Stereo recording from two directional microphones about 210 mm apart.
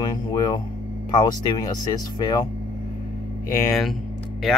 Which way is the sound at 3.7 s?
Centre (ahead or behind).